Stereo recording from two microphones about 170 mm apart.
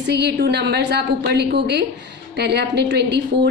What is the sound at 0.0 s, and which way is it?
A woman's voice, 85° right.